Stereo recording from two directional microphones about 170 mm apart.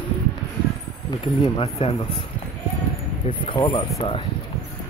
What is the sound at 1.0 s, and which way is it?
Speech, 25° left (ahead or behind).